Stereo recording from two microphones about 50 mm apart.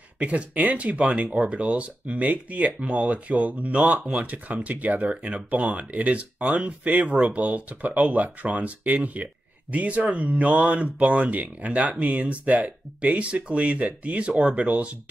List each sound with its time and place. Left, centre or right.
0.2 s speech: right